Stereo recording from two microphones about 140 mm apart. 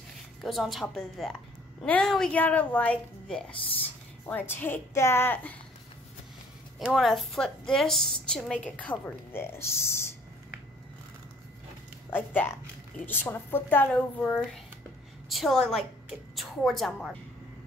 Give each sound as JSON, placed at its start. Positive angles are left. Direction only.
{"t": 0.4, "sound": "a woman's voice", "side_deg": 0}
{"t": 6.8, "sound": "a woman's voice", "side_deg": 0}
{"t": 12.1, "sound": "a woman's voice", "side_deg": 15}
{"t": 15.2, "sound": "a woman's voice", "side_deg": 0}